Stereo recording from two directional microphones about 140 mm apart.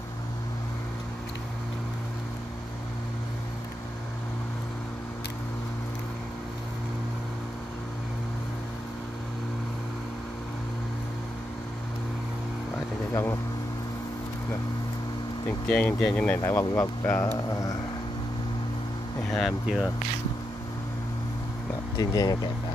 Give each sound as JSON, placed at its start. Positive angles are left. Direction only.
{"t": 13.1, "sound": "vehicle", "side_deg": 20}
{"t": 15.7, "sound": "speech", "side_deg": 5}
{"t": 16.3, "sound": "speech", "side_deg": 20}
{"t": 19.3, "sound": "speech", "side_deg": 0}
{"t": 21.9, "sound": "speech", "side_deg": 30}